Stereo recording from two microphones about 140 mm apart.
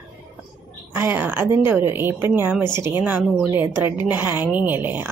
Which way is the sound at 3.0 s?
5° right (ahead or behind).